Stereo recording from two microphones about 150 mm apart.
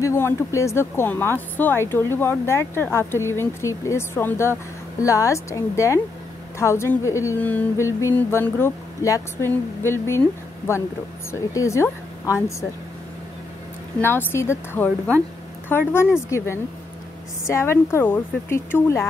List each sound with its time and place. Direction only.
0.0 s a woman's voice: 20° left (ahead or behind)
11.5 s a woman's voice: 20° left (ahead or behind)
13.9 s speech: 15° left (ahead or behind)